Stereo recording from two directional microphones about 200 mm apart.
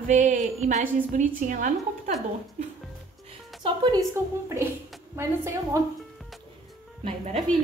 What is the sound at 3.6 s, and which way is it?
A woman's voice, 20° right (ahead or behind).